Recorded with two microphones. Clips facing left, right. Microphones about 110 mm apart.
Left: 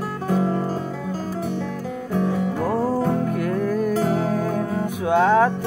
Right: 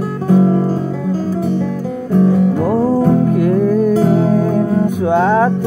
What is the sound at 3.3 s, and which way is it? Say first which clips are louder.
Music: right 9 dB; 20° right (ahead or behind).